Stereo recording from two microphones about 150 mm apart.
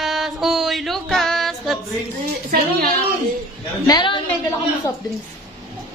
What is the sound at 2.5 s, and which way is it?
Speech, 90° right.